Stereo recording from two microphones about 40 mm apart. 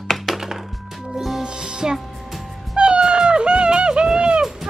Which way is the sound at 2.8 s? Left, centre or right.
Right.